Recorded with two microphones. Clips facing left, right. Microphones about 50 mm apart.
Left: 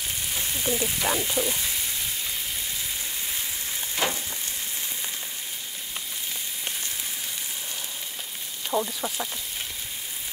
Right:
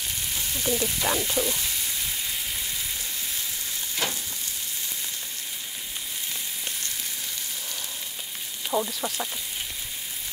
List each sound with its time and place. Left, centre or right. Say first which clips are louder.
0.3 s frying: even; centre
1.0 s speech: left 1 dB; centre
3.9 s frying: left 3 dB; left
8.6 s speech: even; centre